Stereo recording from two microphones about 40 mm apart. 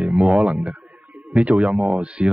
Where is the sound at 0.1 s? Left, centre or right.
Right.